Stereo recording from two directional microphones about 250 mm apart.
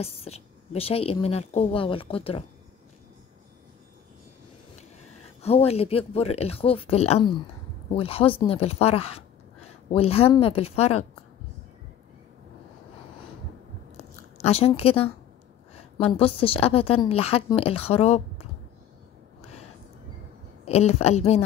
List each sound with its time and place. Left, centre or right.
0.0 s a woman's voice: left
5.4 s a woman's voice: left
14.4 s a woman's voice: left
20.6 s a woman's voice: left